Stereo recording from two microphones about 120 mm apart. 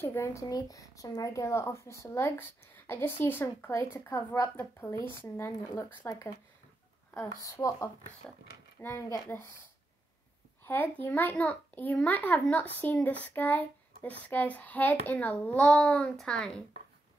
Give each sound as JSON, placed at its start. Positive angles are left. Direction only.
{"t": 0.0, "sound": "speech", "side_deg": 20}
{"t": 7.4, "sound": "speech", "side_deg": 25}
{"t": 10.6, "sound": "a child's voice", "side_deg": 15}